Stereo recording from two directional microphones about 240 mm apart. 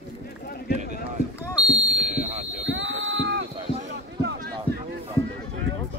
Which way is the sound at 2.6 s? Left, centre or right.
Right.